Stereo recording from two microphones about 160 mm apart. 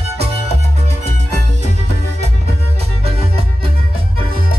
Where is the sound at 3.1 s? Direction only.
35° right (ahead or behind).